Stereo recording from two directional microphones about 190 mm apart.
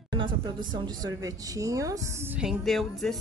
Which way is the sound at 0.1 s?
25° right (ahead or behind).